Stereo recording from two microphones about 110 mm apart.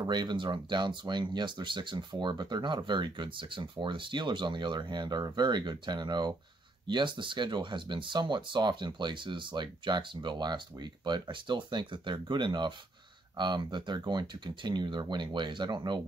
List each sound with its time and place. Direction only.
0.0 s speech: 40° right (ahead or behind)